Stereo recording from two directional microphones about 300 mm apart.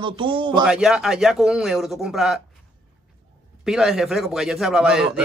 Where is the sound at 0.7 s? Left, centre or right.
Centre.